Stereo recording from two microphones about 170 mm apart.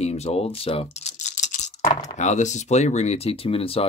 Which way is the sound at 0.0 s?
40° left (ahead or behind).